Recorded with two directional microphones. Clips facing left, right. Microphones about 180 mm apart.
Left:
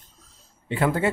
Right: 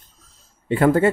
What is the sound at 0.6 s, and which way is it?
Speech, 50° right (ahead or behind).